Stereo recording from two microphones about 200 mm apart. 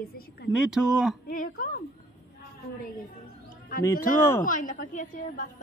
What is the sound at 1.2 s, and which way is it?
Speech, 45° left (ahead or behind).